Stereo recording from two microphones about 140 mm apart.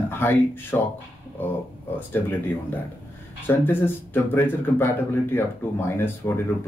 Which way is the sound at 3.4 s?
15° left (ahead or behind).